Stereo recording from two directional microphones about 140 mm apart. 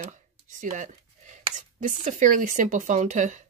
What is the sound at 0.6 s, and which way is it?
Speech, 60° right (ahead or behind).